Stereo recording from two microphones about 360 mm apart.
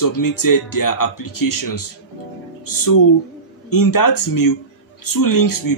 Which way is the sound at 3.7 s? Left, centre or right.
Left.